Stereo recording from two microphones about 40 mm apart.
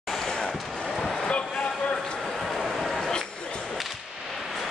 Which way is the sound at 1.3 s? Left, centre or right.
Left.